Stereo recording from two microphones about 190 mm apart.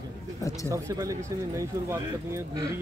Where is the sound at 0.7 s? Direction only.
15° right (ahead or behind).